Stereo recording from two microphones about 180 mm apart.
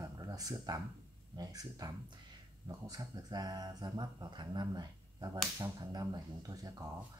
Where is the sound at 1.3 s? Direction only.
20° right (ahead or behind).